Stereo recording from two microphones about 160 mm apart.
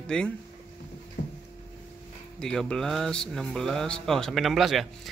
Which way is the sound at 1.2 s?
55° left (ahead or behind).